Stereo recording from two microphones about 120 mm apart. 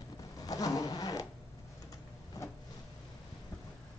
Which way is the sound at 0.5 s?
30° left (ahead or behind).